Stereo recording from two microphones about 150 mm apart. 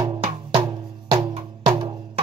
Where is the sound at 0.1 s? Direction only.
35° right (ahead or behind).